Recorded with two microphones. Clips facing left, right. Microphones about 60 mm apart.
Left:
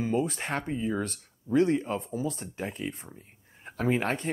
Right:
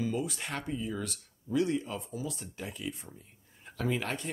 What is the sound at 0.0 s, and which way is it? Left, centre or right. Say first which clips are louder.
Speech: left 5 dB; left.